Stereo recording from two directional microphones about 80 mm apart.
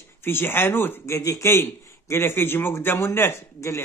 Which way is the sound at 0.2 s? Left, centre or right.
Left.